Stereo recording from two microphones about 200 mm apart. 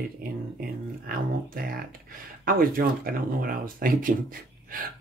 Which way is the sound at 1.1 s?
50° right (ahead or behind).